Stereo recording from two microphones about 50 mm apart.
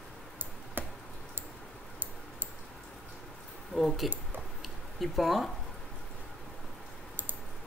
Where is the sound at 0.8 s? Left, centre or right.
Right.